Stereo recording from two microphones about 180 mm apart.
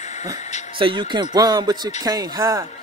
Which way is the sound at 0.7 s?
30° right (ahead or behind).